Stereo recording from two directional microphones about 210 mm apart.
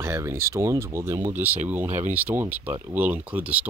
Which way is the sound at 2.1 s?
10° right (ahead or behind).